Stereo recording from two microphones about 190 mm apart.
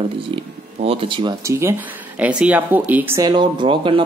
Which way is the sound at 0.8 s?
25° right (ahead or behind).